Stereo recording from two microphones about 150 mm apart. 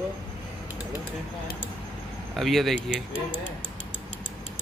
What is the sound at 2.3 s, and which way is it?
Speech, centre (ahead or behind).